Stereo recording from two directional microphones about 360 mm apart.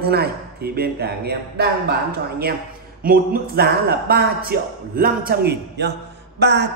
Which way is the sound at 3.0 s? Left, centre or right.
Right.